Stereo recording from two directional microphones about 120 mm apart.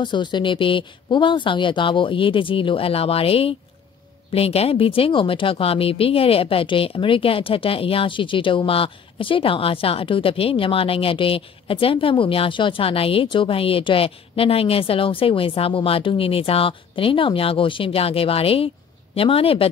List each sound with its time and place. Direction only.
0.0 s speech: 40° left (ahead or behind)